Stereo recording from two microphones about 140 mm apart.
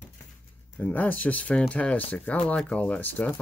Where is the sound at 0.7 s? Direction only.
10° left (ahead or behind).